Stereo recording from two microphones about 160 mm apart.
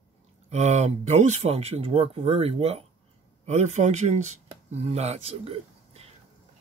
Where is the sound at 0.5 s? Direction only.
45° right (ahead or behind).